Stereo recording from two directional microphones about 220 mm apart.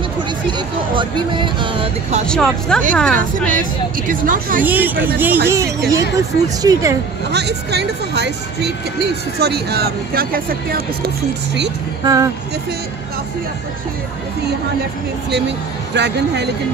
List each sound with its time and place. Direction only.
0.5 s speech: 20° right (ahead or behind)
2.2 s speech: 5° left (ahead or behind)
4.1 s speech: 40° right (ahead or behind)
4.6 s speech: 10° right (ahead or behind)
7.3 s speech: 50° right (ahead or behind)
12.0 s speech: 15° right (ahead or behind)
15.9 s speech: 50° right (ahead or behind)